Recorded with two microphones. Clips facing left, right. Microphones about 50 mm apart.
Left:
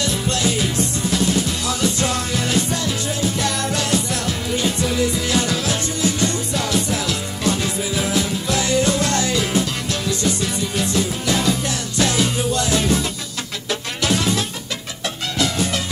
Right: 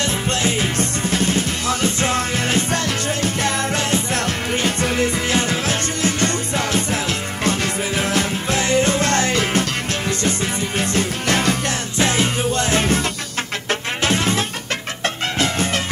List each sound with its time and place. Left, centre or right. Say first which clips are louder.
0.0 s music: right 1 dB; right
10.8 s music: even; right
12.0 s music: right 1 dB; right